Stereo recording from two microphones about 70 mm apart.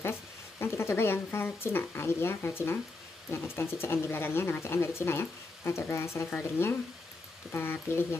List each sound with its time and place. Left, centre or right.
0.0 s speech: left